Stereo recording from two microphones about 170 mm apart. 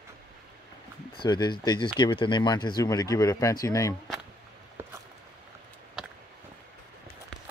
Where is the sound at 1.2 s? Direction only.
25° left (ahead or behind).